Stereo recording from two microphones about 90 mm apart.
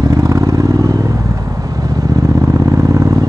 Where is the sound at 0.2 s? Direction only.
40° right (ahead or behind).